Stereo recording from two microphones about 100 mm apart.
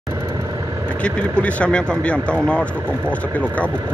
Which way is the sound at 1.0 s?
10° left (ahead or behind).